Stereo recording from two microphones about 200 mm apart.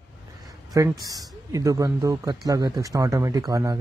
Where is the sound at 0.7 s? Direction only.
15° right (ahead or behind).